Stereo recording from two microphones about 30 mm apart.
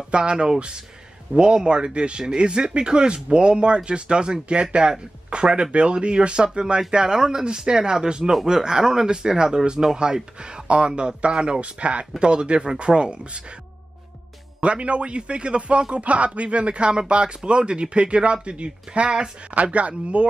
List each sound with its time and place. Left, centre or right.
0.1 s speech: right
6.9 s speech: right
12.2 s speech: right
14.6 s speech: right
15.9 s speech: right
19.5 s speech: right